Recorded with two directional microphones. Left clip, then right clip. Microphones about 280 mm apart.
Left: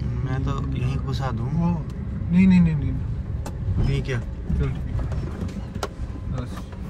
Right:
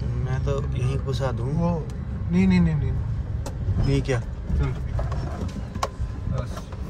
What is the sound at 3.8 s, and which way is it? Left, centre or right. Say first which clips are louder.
Speech: right 5 dB; centre.